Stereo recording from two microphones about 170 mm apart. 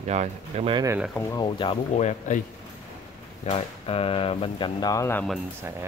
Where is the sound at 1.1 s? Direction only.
15° left (ahead or behind).